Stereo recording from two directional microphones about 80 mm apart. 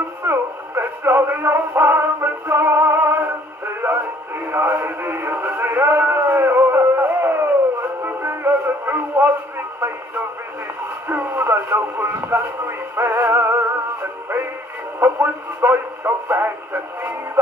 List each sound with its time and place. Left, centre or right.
0.2 s synthetic singing: right
4.5 s speech: right
4.8 s music: right
11.1 s speech: right
15.0 s speech: right